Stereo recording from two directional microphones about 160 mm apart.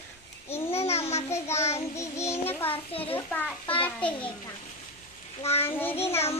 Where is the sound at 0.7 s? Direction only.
40° left (ahead or behind).